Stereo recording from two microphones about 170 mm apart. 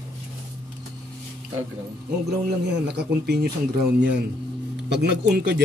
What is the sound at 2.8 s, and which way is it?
Speech, 75° right (ahead or behind).